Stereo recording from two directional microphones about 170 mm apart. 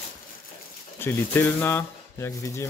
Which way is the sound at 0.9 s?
15° left (ahead or behind).